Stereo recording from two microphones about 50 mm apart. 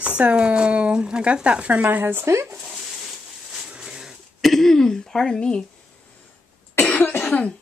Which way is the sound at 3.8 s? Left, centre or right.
Centre.